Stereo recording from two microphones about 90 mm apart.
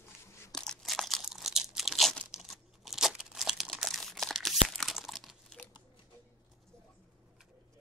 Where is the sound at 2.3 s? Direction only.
5° right (ahead or behind).